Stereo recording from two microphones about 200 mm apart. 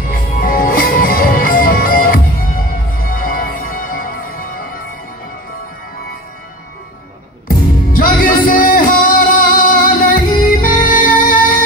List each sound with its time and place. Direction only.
0.1 s music: 45° left (ahead or behind)
7.4 s music: 45° left (ahead or behind)